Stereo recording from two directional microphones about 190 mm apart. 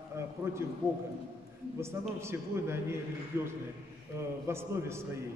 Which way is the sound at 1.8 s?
15° right (ahead or behind).